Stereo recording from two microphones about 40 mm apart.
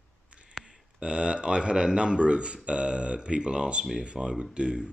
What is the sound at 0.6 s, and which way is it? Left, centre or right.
Speech, right.